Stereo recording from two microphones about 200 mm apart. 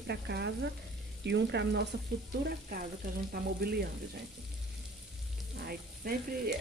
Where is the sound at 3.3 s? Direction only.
50° right (ahead or behind).